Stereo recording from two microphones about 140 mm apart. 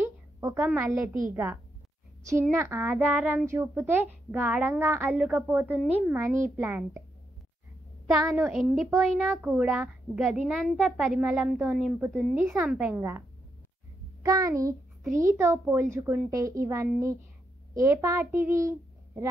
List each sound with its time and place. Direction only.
0.0 s a sound: 20° right (ahead or behind)
0.7 s speech: 15° right (ahead or behind)
8.2 s a woman's voice: 5° right (ahead or behind)
9.3 s speech: 15° right (ahead or behind)
14.2 s a child's voice: 25° right (ahead or behind)
18.6 s a sound: 20° right (ahead or behind)